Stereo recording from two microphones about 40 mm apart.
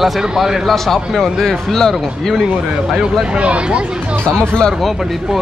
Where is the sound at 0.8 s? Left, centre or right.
Centre.